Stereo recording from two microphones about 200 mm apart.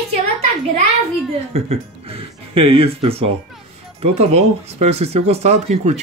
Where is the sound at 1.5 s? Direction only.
30° right (ahead or behind).